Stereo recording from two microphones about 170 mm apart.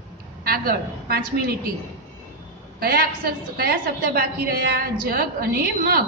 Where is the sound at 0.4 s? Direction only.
65° right (ahead or behind).